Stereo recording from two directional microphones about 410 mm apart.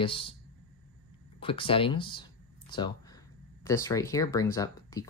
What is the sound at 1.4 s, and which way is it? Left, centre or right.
Speech, centre.